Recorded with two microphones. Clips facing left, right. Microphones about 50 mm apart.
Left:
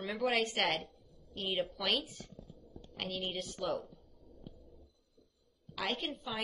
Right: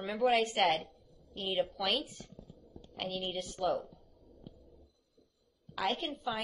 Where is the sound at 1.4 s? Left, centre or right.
Centre.